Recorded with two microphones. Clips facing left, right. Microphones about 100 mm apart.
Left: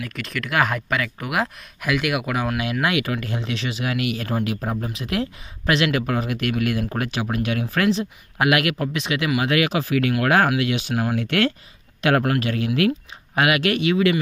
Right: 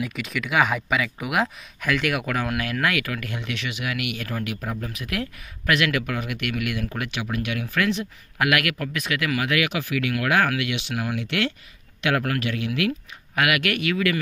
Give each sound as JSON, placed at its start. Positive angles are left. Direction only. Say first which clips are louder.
{"t": 0.0, "sound": "speech", "louder": "right 1 dB", "side_deg": -5}